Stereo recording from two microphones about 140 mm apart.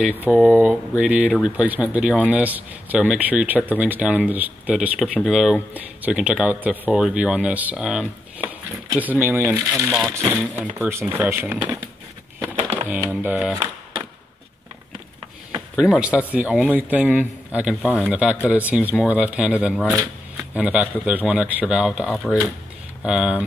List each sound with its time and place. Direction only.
0.0 s speech: 10° right (ahead or behind)
12.8 s speech: 10° right (ahead or behind)
16.0 s speech: 10° right (ahead or behind)